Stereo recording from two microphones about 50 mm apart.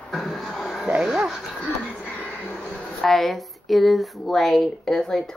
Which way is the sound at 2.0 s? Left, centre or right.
Left.